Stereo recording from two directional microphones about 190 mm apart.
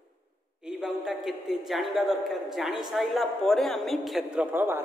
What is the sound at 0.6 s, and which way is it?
A man's voice, 5° right (ahead or behind).